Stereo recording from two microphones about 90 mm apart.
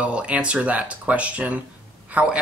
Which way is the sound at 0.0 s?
15° right (ahead or behind).